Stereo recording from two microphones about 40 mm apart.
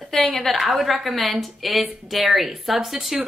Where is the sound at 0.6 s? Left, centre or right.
Centre.